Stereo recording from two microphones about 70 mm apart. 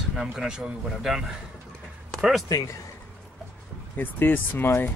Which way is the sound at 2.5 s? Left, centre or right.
Left.